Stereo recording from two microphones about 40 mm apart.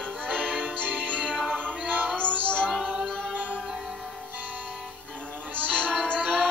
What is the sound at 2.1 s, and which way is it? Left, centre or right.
Music, left.